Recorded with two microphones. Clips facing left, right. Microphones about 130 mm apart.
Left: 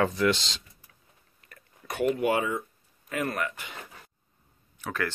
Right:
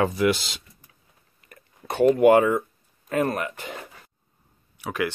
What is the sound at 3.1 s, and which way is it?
Speech, 35° right (ahead or behind).